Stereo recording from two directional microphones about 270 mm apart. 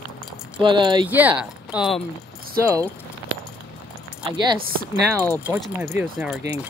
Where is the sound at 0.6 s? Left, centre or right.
Centre.